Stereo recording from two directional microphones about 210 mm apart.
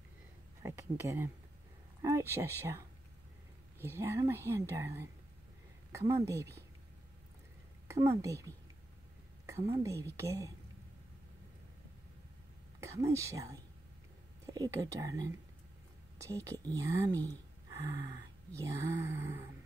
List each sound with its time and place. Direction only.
0.6 s speech: 15° right (ahead or behind)
3.8 s speech: 10° right (ahead or behind)
7.9 s speech: 15° right (ahead or behind)
9.8 s speech: 15° right (ahead or behind)
12.8 s speech: 15° right (ahead or behind)
16.4 s speech: 15° right (ahead or behind)